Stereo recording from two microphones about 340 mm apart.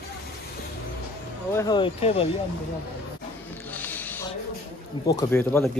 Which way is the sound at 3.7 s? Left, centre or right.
Centre.